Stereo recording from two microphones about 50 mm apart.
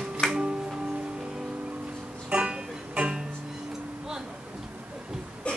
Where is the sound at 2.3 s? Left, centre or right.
Right.